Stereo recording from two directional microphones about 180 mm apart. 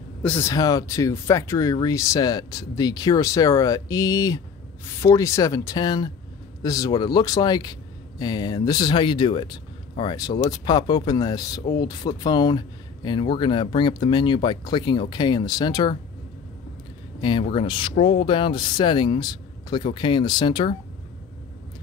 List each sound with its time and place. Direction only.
0.2 s speech: 10° left (ahead or behind)
17.2 s speech: 25° left (ahead or behind)